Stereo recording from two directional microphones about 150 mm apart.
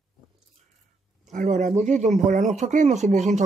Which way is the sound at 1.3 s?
55° right (ahead or behind).